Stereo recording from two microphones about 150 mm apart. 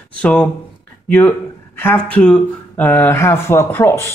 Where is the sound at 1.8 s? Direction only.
10° left (ahead or behind).